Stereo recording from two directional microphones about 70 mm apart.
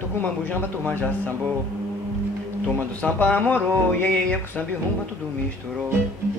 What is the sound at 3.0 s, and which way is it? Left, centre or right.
Speech, centre.